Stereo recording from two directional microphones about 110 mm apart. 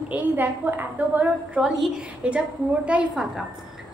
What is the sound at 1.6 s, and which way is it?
A woman's voice, centre (ahead or behind).